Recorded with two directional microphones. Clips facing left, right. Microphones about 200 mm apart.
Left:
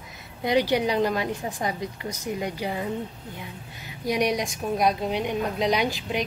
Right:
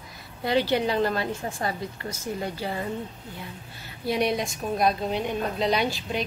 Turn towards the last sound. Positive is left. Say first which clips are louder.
# left 1 dB
turn(degrees=15)  # may be behind; listen again after turning